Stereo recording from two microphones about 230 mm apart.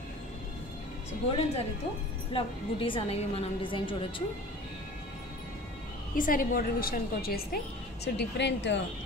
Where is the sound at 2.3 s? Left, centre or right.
Left.